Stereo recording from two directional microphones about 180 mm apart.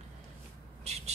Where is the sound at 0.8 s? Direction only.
35° right (ahead or behind).